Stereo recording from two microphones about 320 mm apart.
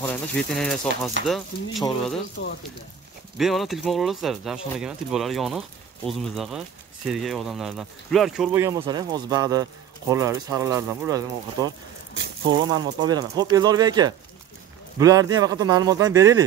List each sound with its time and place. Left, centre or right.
0.0 s speech: centre
3.3 s speech: centre